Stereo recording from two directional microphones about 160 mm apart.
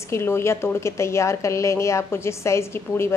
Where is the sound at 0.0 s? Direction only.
15° left (ahead or behind).